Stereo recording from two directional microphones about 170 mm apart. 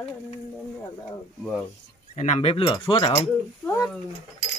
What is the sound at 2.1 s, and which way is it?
Speech, 45° left (ahead or behind).